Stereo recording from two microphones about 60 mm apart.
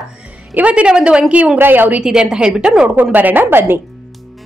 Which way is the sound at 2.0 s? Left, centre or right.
Centre.